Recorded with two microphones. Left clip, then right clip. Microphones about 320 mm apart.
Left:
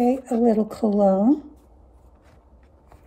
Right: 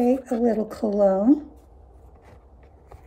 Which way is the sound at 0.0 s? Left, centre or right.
Centre.